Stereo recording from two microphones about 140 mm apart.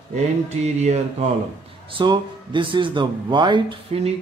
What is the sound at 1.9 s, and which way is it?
Speech, 35° right (ahead or behind).